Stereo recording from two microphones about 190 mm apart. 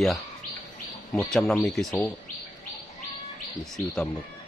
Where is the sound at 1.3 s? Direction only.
Centre (ahead or behind).